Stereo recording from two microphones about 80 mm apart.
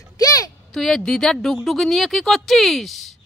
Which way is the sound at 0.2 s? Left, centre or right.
Left.